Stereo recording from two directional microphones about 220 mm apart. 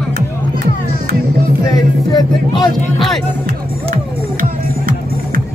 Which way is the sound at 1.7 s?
20° left (ahead or behind).